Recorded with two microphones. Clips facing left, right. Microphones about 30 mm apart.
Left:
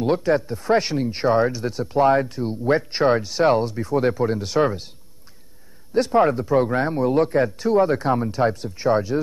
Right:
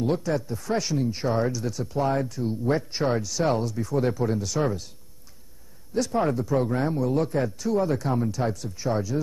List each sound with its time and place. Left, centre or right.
0.0 s speech: left
5.9 s speech: left